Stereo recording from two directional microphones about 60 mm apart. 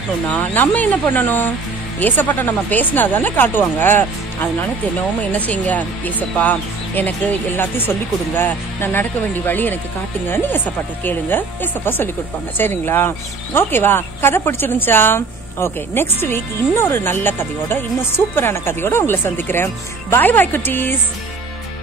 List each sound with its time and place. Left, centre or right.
0.3 s speech: left